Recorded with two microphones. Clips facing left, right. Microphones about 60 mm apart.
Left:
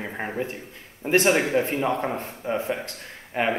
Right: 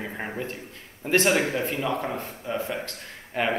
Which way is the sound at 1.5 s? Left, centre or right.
Left.